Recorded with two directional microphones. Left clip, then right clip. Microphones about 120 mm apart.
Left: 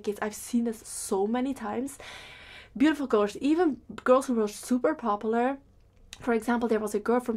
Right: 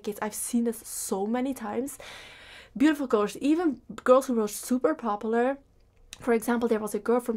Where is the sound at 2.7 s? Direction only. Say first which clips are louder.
Even; 40° left (ahead or behind).